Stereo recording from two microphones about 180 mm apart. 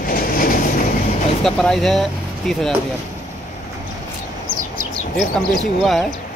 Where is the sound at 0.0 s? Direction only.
50° left (ahead or behind).